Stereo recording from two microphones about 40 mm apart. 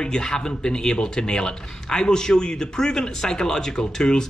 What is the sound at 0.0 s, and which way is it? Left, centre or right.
Speech, centre.